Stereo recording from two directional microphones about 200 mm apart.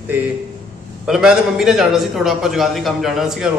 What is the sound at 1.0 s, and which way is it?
Speech, 5° right (ahead or behind).